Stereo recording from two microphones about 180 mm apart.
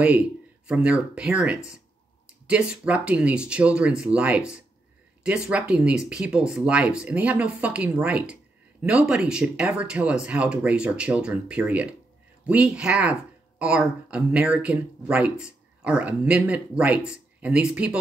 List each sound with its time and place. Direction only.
0.0 s speech: 5° right (ahead or behind)